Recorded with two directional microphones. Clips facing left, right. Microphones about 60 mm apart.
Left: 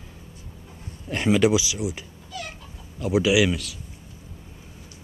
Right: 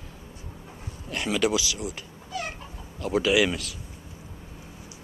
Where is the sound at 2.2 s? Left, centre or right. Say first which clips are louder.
Right 3 dB; right.